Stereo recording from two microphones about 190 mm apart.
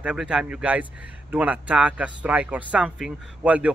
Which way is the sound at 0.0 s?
5° right (ahead or behind).